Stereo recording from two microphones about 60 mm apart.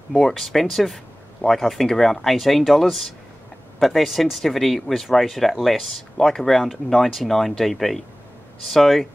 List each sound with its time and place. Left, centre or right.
0.1 s speech: centre